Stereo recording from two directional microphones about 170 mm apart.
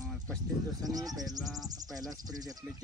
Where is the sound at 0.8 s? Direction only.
20° right (ahead or behind).